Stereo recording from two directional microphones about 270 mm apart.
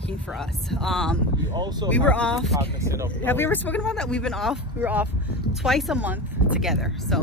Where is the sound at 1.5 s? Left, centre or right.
Centre.